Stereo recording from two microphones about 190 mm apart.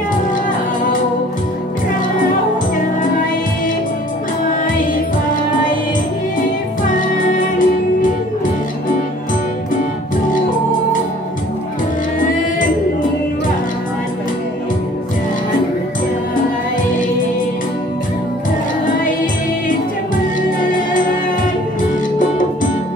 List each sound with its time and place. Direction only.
7.3 s music: 45° left (ahead or behind)